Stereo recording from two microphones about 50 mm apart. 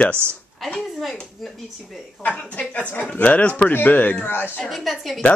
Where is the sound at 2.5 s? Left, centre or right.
Left.